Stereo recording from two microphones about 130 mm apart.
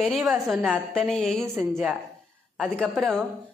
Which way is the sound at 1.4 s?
20° right (ahead or behind).